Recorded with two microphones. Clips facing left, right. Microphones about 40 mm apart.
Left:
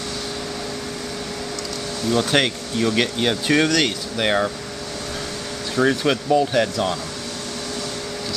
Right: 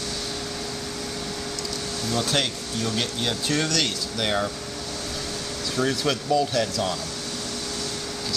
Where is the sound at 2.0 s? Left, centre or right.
Left.